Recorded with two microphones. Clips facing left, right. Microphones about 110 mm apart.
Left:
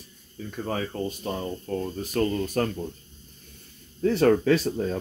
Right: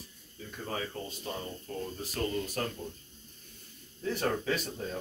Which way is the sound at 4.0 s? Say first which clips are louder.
Left 12 dB; 90° left.